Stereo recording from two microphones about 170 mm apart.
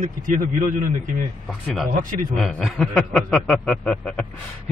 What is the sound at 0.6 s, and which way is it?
A man's voice, 50° right (ahead or behind).